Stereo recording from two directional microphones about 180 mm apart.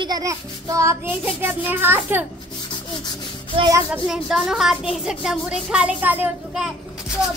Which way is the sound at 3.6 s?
20° right (ahead or behind).